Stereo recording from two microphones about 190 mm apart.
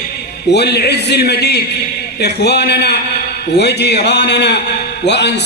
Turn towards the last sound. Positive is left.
turn(degrees=65)  # may be behind; listen again after turning